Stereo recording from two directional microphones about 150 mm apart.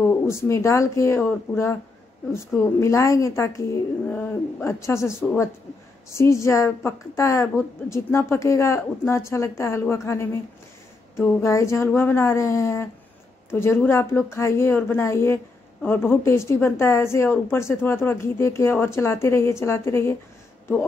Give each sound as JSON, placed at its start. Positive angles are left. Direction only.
{"t": 0.0, "sound": "a woman's voice", "side_deg": 15}